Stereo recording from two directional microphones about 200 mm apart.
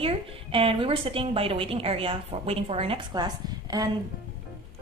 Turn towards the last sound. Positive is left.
turn(degrees=-20)  # may be behind; listen again after turning